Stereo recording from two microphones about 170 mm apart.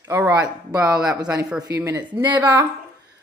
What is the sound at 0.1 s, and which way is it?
Speech, 10° right (ahead or behind).